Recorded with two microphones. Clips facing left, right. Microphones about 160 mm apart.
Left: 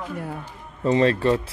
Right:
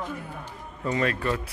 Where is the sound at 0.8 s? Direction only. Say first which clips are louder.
Left 8 dB; 30° left (ahead or behind).